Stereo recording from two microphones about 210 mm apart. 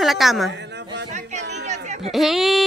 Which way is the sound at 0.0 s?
Centre (ahead or behind).